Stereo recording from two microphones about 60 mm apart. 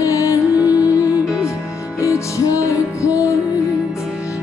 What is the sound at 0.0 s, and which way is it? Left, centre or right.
Music, left.